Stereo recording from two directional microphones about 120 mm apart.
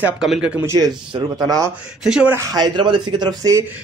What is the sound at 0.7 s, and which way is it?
Speech, 30° right (ahead or behind).